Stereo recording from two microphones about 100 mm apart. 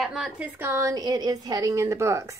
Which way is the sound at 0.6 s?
30° right (ahead or behind).